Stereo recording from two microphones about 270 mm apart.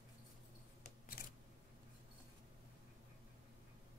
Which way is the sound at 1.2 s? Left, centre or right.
Left.